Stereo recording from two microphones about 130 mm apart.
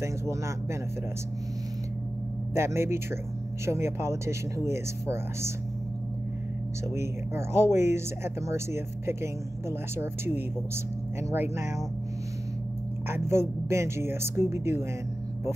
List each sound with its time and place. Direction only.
0.0 s speech: 20° right (ahead or behind)
2.5 s speech: 20° right (ahead or behind)
6.9 s speech: 20° right (ahead or behind)
13.1 s speech: 20° right (ahead or behind)